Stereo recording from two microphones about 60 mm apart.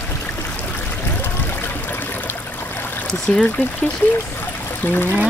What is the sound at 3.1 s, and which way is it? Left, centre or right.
Speech, centre.